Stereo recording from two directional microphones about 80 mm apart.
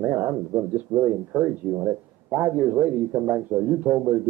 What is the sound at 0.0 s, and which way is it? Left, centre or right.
Speech, right.